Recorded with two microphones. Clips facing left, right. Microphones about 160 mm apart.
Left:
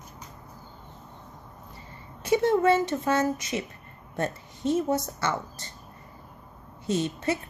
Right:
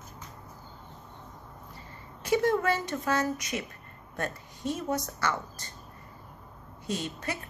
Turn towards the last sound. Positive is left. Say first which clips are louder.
# left 7 dB
turn(degrees=25)  # may be behind; listen again after turning